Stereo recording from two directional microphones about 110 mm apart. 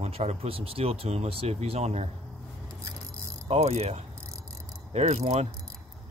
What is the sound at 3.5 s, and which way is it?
Speech, 70° right (ahead or behind).